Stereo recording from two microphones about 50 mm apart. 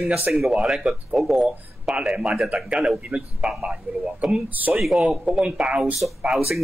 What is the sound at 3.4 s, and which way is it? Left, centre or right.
Speech, centre.